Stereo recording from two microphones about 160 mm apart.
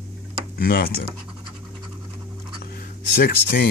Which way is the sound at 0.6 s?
70° left (ahead or behind).